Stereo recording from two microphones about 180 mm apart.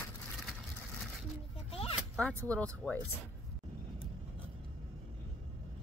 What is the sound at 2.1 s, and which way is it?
Speech, 5° left (ahead or behind).